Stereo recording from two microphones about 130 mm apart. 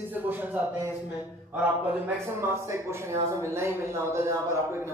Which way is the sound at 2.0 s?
20° right (ahead or behind).